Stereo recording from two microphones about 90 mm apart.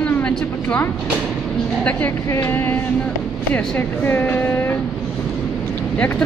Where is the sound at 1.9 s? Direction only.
15° left (ahead or behind).